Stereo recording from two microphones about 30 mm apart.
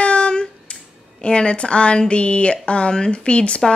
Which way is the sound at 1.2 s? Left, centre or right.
Left.